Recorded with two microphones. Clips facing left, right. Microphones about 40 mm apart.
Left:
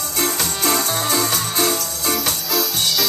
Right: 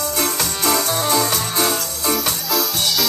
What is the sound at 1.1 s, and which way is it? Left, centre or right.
Music, right.